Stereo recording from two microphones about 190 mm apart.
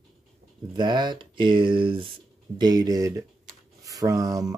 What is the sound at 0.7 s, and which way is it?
Speech, 25° right (ahead or behind).